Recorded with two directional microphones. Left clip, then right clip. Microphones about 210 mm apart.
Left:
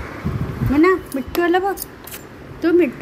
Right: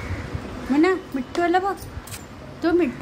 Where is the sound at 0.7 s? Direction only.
5° left (ahead or behind).